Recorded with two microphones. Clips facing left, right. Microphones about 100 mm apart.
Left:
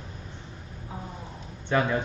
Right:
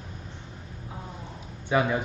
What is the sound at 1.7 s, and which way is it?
Speech, 10° right (ahead or behind).